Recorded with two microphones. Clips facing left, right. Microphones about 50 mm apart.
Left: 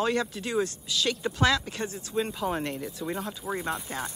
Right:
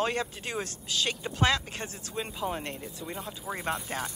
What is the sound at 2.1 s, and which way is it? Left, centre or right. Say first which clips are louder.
Speech: left 4 dB; centre.